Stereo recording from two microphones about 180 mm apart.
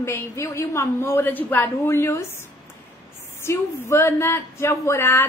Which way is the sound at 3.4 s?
15° left (ahead or behind).